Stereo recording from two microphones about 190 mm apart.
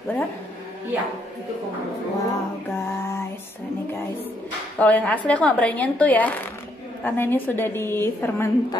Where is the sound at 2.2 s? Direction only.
15° left (ahead or behind).